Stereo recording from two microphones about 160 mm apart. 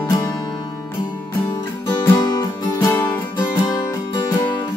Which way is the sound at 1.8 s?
25° left (ahead or behind).